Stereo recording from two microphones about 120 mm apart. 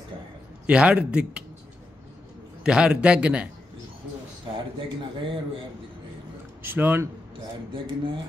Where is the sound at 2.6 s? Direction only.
5° right (ahead or behind).